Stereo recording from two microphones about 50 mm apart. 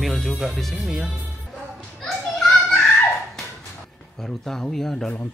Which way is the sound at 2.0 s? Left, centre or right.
Centre.